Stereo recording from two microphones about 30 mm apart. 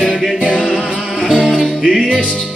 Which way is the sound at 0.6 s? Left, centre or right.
Centre.